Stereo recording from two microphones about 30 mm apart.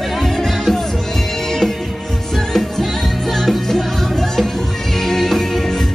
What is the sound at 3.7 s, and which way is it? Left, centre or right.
Music, centre.